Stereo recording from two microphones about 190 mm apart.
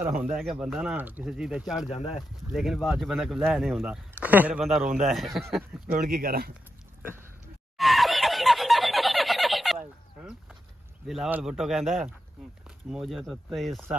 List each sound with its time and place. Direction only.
0.4 s speech: centre (ahead or behind)
5.9 s speech: 50° right (ahead or behind)
7.7 s snicker: centre (ahead or behind)
9.8 s fowl: 5° right (ahead or behind)
11.1 s speech: 5° right (ahead or behind)